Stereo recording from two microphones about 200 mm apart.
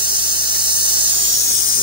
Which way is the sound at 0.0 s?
25° right (ahead or behind).